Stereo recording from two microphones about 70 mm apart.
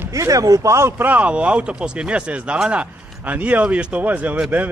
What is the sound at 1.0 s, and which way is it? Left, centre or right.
A man's voice, right.